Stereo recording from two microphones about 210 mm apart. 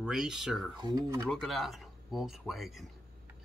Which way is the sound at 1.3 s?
Centre (ahead or behind).